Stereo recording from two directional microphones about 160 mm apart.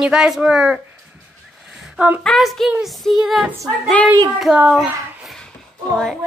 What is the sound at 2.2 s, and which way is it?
A woman's voice, centre (ahead or behind).